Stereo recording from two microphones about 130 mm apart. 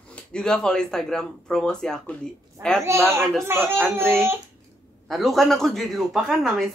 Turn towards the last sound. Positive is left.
turn(degrees=0)  # may be behind; listen again after turning